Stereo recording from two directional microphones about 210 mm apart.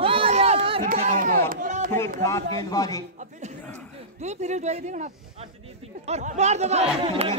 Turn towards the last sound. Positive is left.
turn(degrees=-30)  # may be behind; listen again after turning